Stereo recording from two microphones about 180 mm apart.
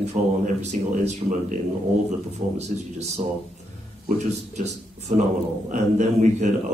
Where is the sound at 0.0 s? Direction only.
40° right (ahead or behind).